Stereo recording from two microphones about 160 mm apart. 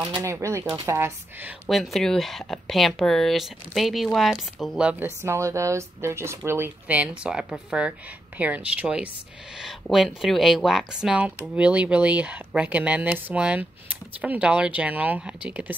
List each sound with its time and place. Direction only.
0.2 s speech: 20° right (ahead or behind)
1.7 s speech: centre (ahead or behind)